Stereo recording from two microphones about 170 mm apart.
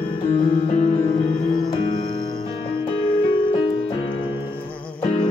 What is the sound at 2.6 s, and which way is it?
Music, 30° left (ahead or behind).